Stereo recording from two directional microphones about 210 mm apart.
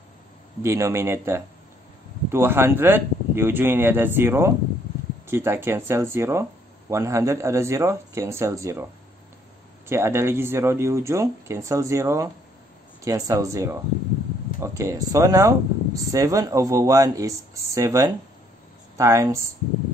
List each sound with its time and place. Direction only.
0.6 s speech: 15° right (ahead or behind)
9.8 s speech: 10° right (ahead or behind)